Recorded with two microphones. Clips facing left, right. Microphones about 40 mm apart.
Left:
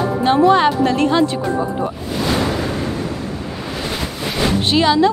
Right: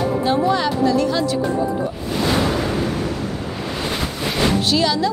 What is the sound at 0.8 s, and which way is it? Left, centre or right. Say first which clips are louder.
Speech: left 3 dB; left.